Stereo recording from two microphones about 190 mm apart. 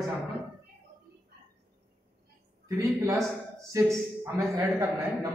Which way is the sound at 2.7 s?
15° right (ahead or behind).